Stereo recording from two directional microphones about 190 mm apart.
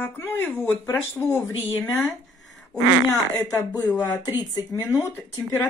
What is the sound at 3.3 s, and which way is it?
Speech, 20° left (ahead or behind).